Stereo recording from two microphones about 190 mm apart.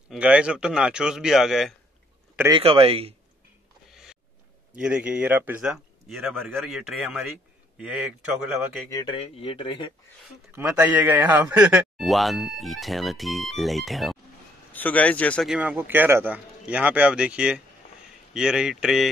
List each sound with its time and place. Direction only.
0.1 s speech: 5° right (ahead or behind)
2.5 s speech: 30° right (ahead or behind)
3.9 s a sound: 5° right (ahead or behind)
4.7 s speech: 5° right (ahead or behind)
8.9 s speech: 25° left (ahead or behind)
10.5 s speech: 5° right (ahead or behind)